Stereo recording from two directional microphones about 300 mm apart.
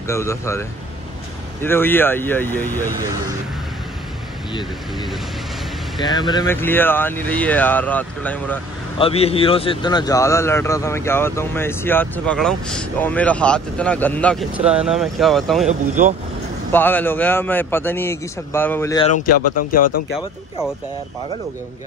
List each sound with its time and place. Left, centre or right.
0.0 s speech: centre
5.9 s speech: centre
8.9 s speech: centre
16.7 s speech: centre
19.0 s speech: left